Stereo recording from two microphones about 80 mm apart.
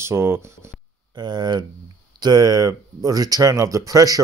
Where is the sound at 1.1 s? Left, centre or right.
Right.